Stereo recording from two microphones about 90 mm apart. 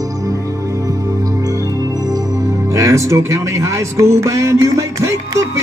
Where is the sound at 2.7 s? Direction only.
35° right (ahead or behind).